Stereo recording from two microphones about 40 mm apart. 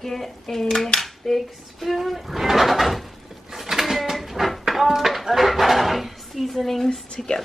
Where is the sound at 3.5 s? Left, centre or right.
Centre.